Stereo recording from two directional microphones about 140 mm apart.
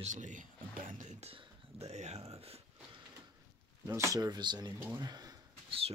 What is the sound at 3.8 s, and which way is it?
Speech, 25° right (ahead or behind).